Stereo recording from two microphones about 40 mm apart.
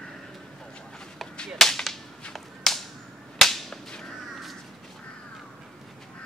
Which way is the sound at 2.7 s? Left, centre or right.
Centre.